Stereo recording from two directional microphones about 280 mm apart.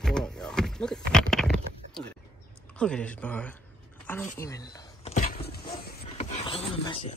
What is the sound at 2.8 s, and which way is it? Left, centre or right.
Speech, centre.